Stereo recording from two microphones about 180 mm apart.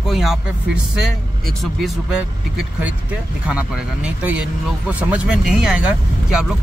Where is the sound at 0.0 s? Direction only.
Centre (ahead or behind).